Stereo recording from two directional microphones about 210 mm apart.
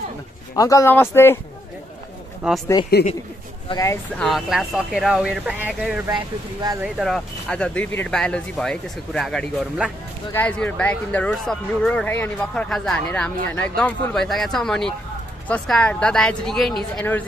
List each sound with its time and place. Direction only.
0.6 s speech: 15° left (ahead or behind)
2.4 s speech: 5° right (ahead or behind)
3.6 s speech: 15° left (ahead or behind)
4.2 s speech: centre (ahead or behind)
6.0 s speech: 15° right (ahead or behind)
6.8 s speech: centre (ahead or behind)